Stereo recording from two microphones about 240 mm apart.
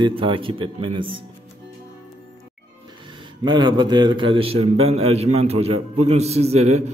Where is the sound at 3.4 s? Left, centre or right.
Centre.